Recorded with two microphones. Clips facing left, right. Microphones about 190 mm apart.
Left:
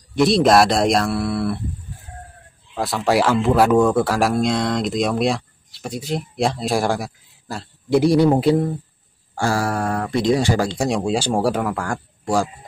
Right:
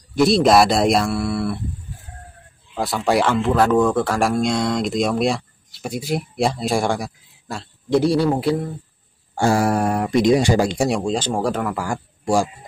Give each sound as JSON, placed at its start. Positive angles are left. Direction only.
{"t": 0.1, "sound": "a man's voice", "side_deg": 0}
{"t": 2.7, "sound": "a man's voice", "side_deg": 0}
{"t": 9.3, "sound": "speech", "side_deg": -20}
{"t": 10.9, "sound": "speech", "side_deg": 5}
{"t": 11.7, "sound": "speech", "side_deg": -10}